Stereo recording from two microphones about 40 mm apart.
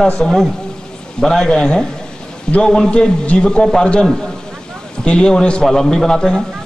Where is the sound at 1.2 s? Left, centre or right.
Centre.